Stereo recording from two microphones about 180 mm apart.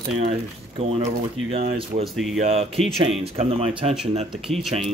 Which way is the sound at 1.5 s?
40° right (ahead or behind).